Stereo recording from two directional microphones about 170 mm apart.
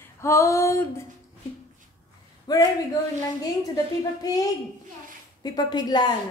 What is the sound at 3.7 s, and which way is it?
A woman's voice, 20° left (ahead or behind).